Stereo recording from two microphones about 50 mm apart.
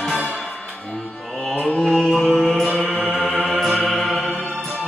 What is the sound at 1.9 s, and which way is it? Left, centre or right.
Music, centre.